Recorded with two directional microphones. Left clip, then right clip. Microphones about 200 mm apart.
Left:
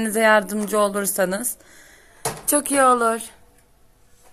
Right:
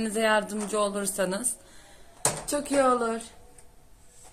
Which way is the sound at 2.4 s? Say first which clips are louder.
Left 7 dB; 60° left (ahead or behind).